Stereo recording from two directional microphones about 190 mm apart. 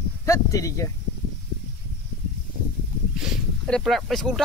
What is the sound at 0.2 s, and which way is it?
Speech, 15° left (ahead or behind).